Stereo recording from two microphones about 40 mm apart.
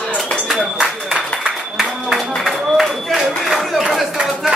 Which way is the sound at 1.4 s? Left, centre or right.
Centre.